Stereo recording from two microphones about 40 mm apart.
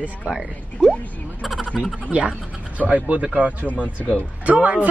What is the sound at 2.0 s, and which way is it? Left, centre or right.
Speech, right.